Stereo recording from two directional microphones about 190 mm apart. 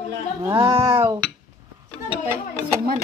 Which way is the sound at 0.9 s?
15° right (ahead or behind).